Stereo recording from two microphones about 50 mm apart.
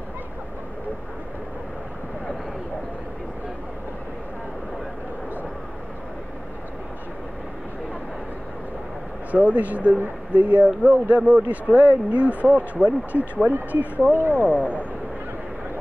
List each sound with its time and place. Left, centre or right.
9.3 s speech: right
14.3 s speech: right
14.6 s speech: left